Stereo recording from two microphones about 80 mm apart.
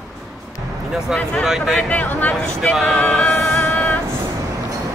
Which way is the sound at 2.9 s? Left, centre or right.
Centre.